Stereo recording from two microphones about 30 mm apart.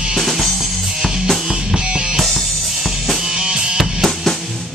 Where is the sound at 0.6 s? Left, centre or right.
Centre.